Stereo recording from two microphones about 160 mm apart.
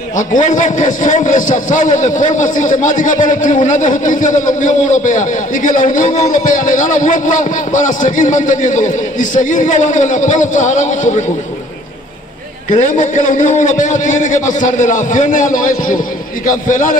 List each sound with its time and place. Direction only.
0.3 s a man's voice: 55° left (ahead or behind)
12.7 s a man's voice: 50° left (ahead or behind)